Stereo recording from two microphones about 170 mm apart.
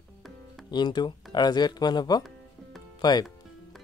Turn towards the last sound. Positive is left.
turn(degrees=25)  # may be behind; listen again after turning